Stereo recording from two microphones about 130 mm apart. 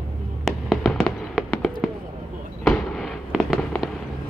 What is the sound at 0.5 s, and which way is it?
Fireworks, centre (ahead or behind).